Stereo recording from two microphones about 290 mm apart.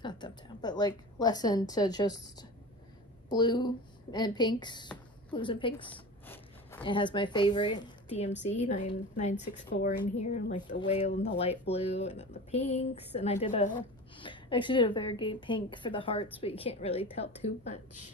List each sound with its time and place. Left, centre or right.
0.0 s a woman's voice: centre